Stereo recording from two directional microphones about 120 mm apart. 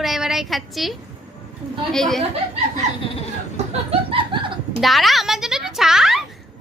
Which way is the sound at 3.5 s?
60° right (ahead or behind).